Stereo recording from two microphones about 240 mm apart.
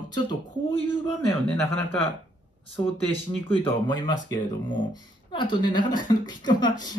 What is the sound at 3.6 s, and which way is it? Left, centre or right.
A woman's voice, centre.